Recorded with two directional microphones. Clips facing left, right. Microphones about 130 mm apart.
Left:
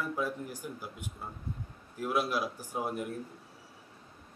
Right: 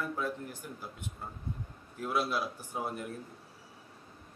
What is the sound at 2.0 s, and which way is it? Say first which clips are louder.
A man's voice: left 1 dB; 10° left (ahead or behind).